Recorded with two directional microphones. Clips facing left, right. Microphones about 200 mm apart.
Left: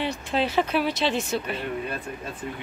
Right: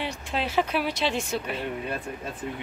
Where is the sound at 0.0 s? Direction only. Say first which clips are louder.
Left 4 dB; 10° right (ahead or behind).